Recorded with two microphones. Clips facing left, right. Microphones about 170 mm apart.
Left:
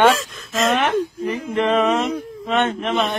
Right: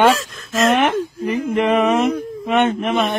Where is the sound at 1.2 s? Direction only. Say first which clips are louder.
Right 3 dB; 15° right (ahead or behind).